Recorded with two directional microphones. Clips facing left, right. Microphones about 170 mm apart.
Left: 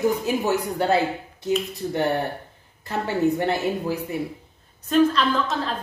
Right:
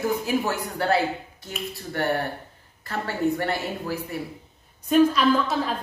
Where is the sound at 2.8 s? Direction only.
20° left (ahead or behind).